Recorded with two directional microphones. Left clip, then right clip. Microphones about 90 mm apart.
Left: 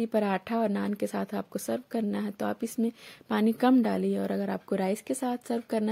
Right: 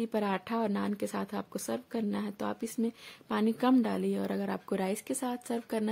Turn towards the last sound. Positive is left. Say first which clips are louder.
# left 4 dB
turn(degrees=35)  # may be behind; listen again after turning